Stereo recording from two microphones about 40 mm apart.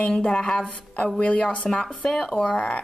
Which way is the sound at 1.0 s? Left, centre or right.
Left.